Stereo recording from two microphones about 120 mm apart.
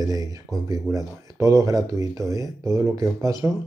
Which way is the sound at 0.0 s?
30° right (ahead or behind).